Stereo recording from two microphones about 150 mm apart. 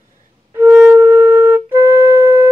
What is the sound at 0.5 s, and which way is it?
Flute, 15° right (ahead or behind).